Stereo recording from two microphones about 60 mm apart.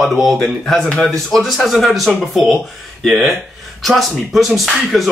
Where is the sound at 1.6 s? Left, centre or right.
Centre.